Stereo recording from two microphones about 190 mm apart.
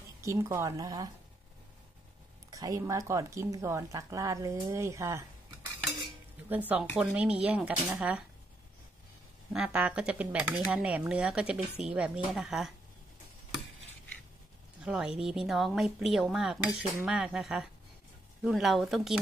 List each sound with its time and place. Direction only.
0.2 s speech: 15° right (ahead or behind)
2.5 s speech: 15° right (ahead or behind)
7.0 s speech: 5° right (ahead or behind)
9.5 s speech: 5° right (ahead or behind)
14.9 s speech: 5° right (ahead or behind)